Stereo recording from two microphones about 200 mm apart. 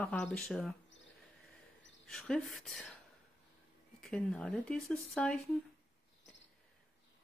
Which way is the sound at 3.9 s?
5° left (ahead or behind).